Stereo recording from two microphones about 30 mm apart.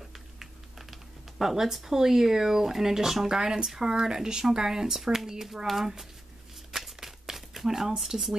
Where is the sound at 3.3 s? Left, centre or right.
Right.